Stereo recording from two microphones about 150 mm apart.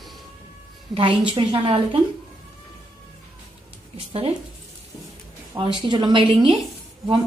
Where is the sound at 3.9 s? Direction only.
40° right (ahead or behind).